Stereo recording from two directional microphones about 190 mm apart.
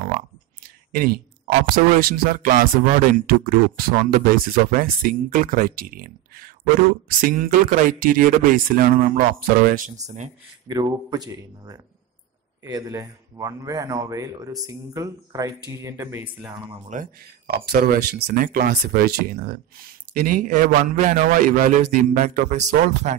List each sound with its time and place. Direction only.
0.9 s speech: 50° right (ahead or behind)
10.7 s a man's voice: 20° right (ahead or behind)
16.9 s speech: 45° right (ahead or behind)